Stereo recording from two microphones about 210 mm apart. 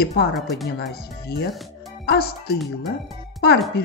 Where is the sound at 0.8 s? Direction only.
50° left (ahead or behind).